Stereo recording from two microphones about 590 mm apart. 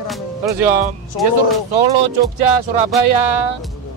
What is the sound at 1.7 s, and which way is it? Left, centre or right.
Speech, right.